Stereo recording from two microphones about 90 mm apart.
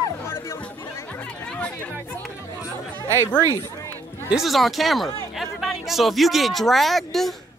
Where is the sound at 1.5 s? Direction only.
10° left (ahead or behind).